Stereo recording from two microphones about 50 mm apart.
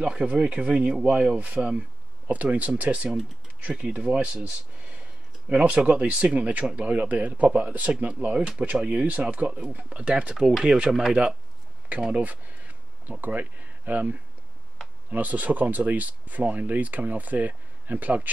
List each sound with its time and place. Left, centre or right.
0.0 s speech: right
10.6 s speech: centre
12.1 s a sound: right
15.0 s speech: right